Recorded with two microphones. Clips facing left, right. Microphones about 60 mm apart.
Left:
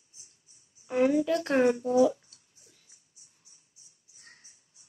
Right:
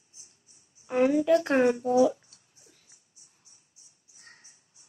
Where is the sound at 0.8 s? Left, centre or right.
Right.